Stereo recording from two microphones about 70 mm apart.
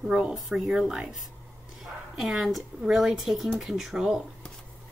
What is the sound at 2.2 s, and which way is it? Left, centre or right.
A woman's voice, centre.